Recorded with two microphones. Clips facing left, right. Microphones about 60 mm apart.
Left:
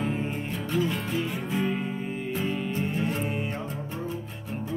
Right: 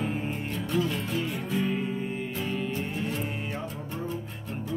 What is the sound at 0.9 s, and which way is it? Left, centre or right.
Music, centre.